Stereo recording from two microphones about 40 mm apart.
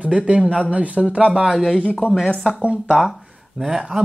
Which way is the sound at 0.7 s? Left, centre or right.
Right.